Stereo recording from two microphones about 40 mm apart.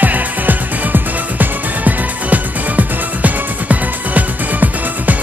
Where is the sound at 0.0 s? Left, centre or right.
Right.